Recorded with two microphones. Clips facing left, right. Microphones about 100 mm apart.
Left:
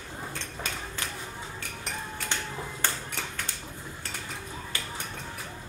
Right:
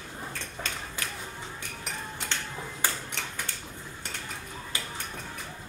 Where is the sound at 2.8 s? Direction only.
10° right (ahead or behind).